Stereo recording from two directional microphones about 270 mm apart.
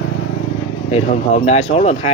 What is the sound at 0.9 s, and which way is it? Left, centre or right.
Speech, left.